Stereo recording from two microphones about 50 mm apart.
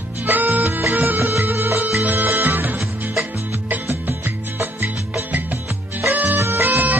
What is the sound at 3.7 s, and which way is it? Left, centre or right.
Music, right.